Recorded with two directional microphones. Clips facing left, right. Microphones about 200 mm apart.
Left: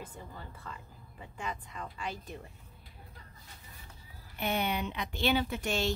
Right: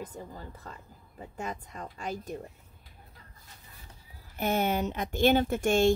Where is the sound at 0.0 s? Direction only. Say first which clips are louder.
Right 5 dB; 40° right (ahead or behind).